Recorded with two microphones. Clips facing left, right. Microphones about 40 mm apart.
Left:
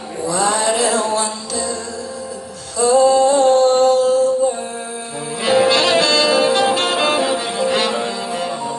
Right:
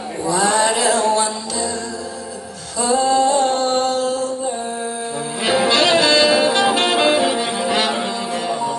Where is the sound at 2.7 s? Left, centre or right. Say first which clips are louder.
Left 4 dB; centre.